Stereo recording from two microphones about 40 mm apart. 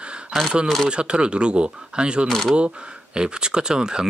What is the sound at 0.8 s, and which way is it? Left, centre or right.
Speech, right.